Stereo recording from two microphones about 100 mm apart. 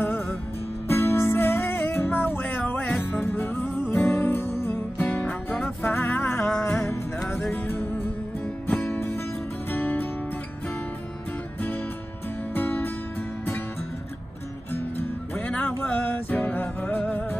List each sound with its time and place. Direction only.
0.0 s music: 20° left (ahead or behind)
7.5 s music: 15° left (ahead or behind)
12.5 s music: 20° left (ahead or behind)
14.7 s music: 20° left (ahead or behind)